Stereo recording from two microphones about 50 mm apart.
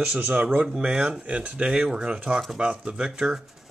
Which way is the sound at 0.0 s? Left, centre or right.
Right.